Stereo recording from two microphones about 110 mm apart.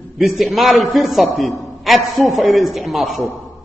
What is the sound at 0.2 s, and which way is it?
A man's voice, centre (ahead or behind).